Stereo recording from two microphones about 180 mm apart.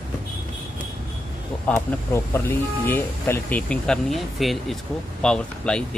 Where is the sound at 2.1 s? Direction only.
10° left (ahead or behind).